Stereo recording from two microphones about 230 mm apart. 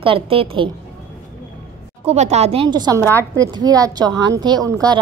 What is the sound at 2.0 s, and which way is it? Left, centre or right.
Speech, right.